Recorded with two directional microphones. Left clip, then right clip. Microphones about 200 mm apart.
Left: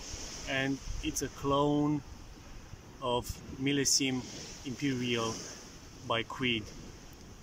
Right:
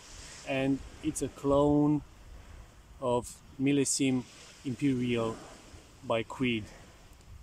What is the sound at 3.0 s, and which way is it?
Speech, 15° right (ahead or behind).